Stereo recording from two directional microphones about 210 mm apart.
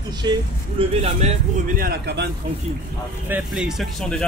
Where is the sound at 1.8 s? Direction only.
50° right (ahead or behind).